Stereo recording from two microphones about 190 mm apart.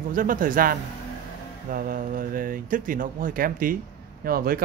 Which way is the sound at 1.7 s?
45° right (ahead or behind).